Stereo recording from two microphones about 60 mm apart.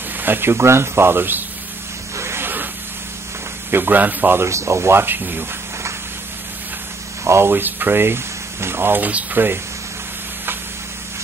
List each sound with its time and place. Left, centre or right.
0.2 s speech: right
2.1 s a sound: right
3.7 s speech: right
4.4 s speech: right
7.2 s speech: right